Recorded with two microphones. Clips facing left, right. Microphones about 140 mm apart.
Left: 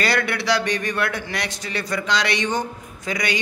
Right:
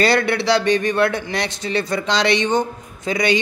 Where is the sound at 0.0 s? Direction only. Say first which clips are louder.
Right 6 dB; 30° right (ahead or behind).